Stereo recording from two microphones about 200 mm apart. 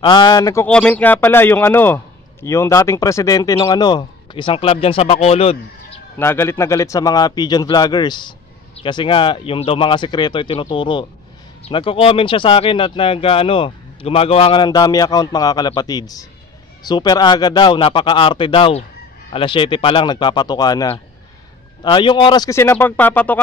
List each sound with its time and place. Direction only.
0.0 s a man's voice: 25° left (ahead or behind)
0.7 s a man's voice: 5° left (ahead or behind); by 5.6 s 30° left (ahead or behind)
6.1 s a man's voice: 10° left (ahead or behind)